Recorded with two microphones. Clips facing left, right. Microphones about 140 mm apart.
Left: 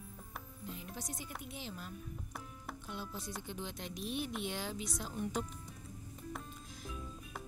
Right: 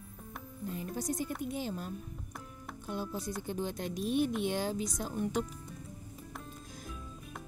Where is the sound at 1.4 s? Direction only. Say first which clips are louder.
Right 9 dB; 45° right (ahead or behind).